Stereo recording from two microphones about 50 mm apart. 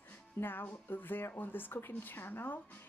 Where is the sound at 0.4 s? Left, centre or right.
Left.